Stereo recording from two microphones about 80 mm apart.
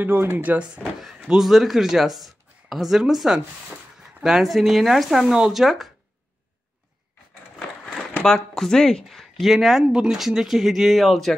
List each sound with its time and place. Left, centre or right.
0.0 s speech: right
1.0 s speech: centre
7.5 s speech: centre